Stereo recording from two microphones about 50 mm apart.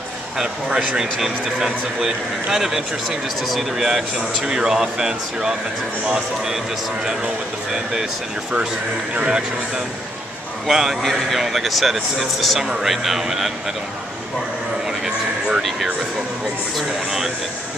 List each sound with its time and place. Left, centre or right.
0.4 s speech: centre
7.7 s speech: centre
9.1 s speech: right
10.7 s speech: centre
14.9 s a sound: centre